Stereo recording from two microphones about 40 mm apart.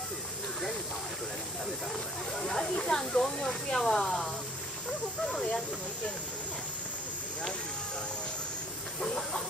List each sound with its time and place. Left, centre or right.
2.4 s a sound: centre
5.2 s hiss: left
9.0 s chicken: centre